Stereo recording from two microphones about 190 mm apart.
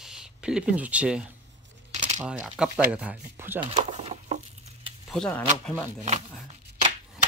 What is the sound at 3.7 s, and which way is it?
Patter, 30° right (ahead or behind).